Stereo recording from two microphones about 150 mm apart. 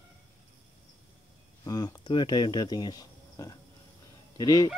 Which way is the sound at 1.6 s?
25° left (ahead or behind).